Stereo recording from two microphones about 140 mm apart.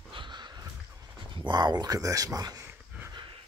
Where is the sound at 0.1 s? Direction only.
35° right (ahead or behind).